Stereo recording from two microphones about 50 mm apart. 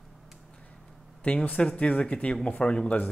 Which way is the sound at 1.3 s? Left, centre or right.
Left.